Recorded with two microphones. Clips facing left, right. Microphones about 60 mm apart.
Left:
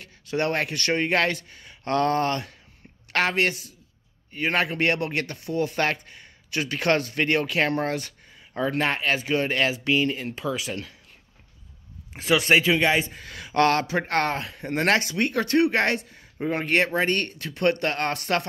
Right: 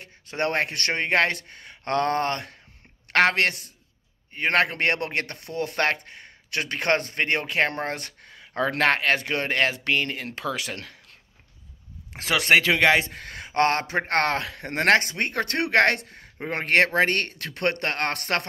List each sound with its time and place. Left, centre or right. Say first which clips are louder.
0.0 s speech: left 1 dB; right
3.1 s speech: right 3 dB; right
12.1 s a man's voice: even; right
13.3 s speech: left 2 dB; right
14.3 s speech: even; right